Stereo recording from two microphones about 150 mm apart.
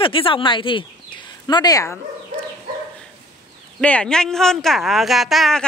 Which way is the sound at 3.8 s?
5° left (ahead or behind).